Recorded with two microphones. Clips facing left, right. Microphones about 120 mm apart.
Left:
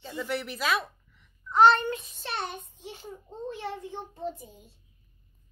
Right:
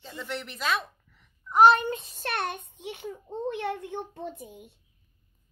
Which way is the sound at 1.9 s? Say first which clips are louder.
Even; 30° right (ahead or behind).